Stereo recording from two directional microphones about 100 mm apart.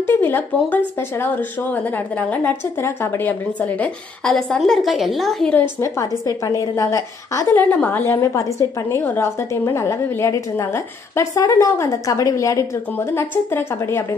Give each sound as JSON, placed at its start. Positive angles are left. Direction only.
{"t": 0.0, "sound": "speech", "side_deg": 20}
{"t": 2.8, "sound": "a woman's voice", "side_deg": 25}
{"t": 5.5, "sound": "a woman's voice", "side_deg": 15}
{"t": 5.9, "sound": "a woman's voice", "side_deg": 35}
{"t": 7.5, "sound": "a woman's voice", "side_deg": 15}
{"t": 8.2, "sound": "a woman's voice", "side_deg": 30}